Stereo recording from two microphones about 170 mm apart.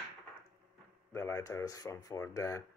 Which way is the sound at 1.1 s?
15° left (ahead or behind).